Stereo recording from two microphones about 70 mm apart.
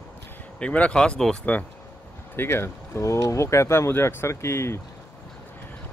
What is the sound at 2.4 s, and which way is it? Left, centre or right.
Speech, left.